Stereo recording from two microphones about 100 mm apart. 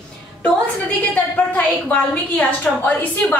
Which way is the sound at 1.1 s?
15° left (ahead or behind).